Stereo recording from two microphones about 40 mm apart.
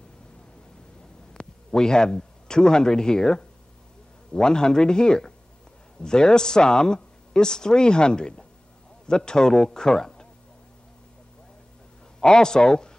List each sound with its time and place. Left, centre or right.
1.3 s a man's voice: centre
12.2 s a man's voice: centre